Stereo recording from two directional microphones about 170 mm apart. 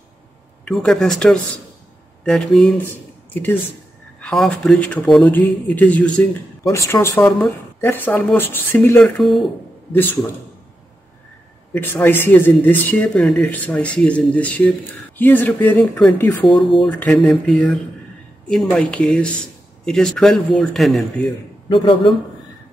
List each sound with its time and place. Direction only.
0.7 s speech: 5° left (ahead or behind)
4.2 s speech: 5° left (ahead or behind)
9.2 s speech: centre (ahead or behind)
11.7 s speech: 10° left (ahead or behind)
21.6 s speech: 30° left (ahead or behind)